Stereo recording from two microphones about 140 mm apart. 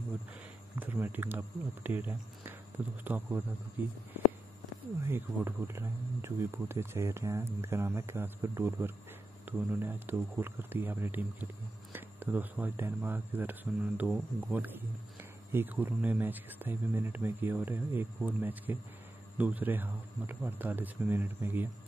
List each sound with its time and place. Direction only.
0.7 s speech: 15° right (ahead or behind)
5.0 s speech: 15° right (ahead or behind)